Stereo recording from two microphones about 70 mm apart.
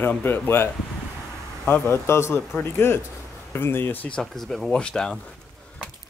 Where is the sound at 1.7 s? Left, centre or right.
Left.